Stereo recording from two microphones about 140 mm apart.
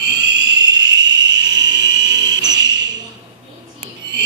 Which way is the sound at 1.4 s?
30° right (ahead or behind).